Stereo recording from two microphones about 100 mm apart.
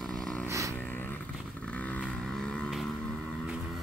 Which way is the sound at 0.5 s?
35° right (ahead or behind).